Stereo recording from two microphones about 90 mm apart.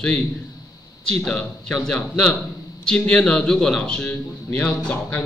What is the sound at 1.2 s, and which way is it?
A man's voice, 5° left (ahead or behind).